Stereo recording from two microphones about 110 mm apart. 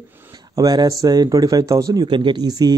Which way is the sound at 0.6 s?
35° right (ahead or behind).